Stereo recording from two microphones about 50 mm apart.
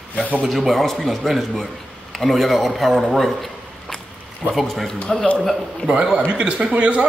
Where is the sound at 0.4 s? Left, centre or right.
Centre.